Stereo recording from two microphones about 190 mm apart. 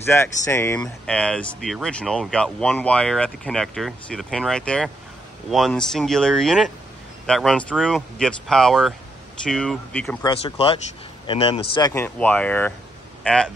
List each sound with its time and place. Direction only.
0.0 s speech: 15° left (ahead or behind)
10.4 s speech: 30° left (ahead or behind)
11.9 s a man's voice: 10° left (ahead or behind)